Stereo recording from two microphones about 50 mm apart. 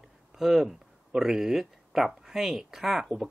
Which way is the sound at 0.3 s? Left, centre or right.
Centre.